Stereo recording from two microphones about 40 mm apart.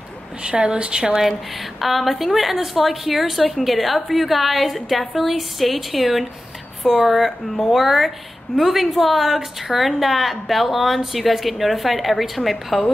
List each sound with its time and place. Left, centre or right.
0.4 s a woman's voice: right
1.8 s a woman's voice: centre